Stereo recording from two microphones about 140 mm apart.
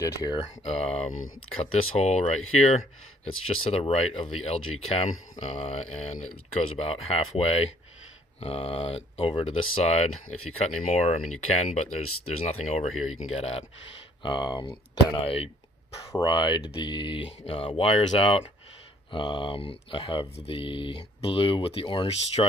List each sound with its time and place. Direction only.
0.0 s speech: 30° left (ahead or behind)
0.7 s speech: 50° left (ahead or behind)
14.2 s speech: 35° left (ahead or behind)
16.0 s speech: 20° left (ahead or behind)
16.3 s speech: 30° left (ahead or behind)